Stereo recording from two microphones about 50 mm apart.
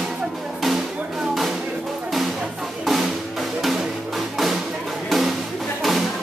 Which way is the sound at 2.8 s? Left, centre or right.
Centre.